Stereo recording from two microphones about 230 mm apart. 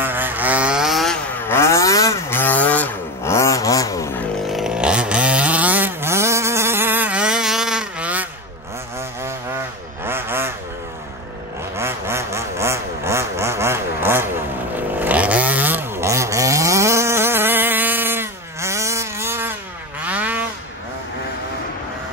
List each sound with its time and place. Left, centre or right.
0.0 s vehicle: centre
1.5 s vehicle: centre
4.5 s chainsaw: centre
10.0 s vehicle: centre
11.7 s vehicle: centre
15.0 s chainsaw: centre
20.1 s vehicle: centre